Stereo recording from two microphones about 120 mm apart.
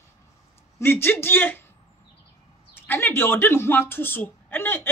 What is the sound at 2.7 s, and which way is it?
A woman's voice, 20° left (ahead or behind).